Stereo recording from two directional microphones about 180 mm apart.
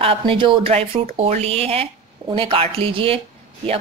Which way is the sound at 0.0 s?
30° right (ahead or behind).